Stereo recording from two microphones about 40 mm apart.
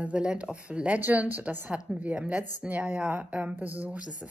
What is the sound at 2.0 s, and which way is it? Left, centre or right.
A woman's voice, right.